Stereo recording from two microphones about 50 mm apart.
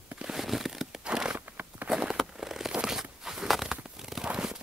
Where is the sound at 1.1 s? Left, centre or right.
Centre.